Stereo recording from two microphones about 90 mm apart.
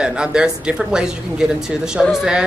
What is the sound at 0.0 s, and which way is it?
Speech, 10° right (ahead or behind).